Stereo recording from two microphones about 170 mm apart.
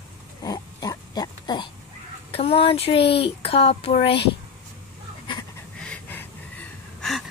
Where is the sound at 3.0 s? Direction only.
85° left.